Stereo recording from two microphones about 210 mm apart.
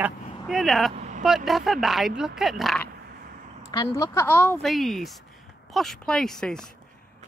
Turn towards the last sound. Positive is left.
turn(degrees=5)  # may be behind; listen again after turning